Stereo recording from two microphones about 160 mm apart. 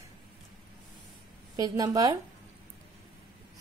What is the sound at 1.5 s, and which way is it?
Speech, 20° right (ahead or behind).